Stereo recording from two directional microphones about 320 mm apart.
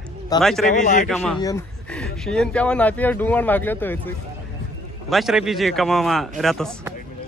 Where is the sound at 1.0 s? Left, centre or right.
Centre.